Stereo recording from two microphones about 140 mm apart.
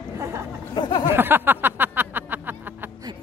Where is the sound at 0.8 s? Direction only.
30° left (ahead or behind).